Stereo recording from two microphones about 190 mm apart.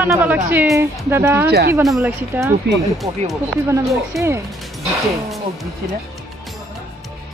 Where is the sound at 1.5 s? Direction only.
60° right (ahead or behind).